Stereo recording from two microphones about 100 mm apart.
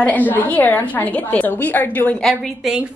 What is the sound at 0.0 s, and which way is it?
A woman's voice, 15° left (ahead or behind).